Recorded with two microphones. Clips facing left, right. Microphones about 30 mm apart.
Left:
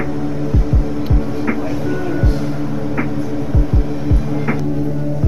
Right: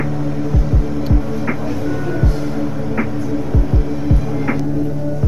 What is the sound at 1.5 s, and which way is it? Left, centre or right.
Music, centre.